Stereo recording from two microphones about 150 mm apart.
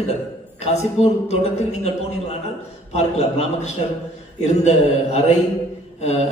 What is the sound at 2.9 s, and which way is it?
A man's voice, 45° left (ahead or behind).